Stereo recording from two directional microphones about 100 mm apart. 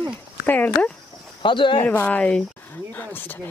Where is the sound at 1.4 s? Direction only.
50° left (ahead or behind).